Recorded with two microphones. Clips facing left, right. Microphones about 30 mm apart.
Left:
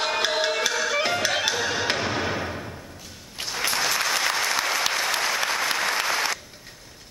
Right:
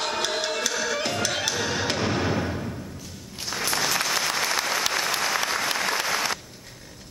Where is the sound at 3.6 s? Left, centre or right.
Centre.